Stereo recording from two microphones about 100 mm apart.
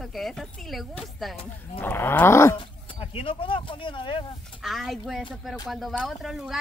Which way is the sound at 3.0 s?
65° left (ahead or behind).